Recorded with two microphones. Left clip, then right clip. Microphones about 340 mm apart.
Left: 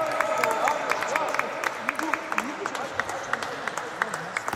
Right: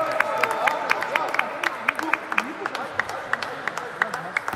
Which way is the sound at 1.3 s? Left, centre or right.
Right.